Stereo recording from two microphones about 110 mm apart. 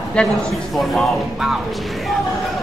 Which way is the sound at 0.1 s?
5° left (ahead or behind).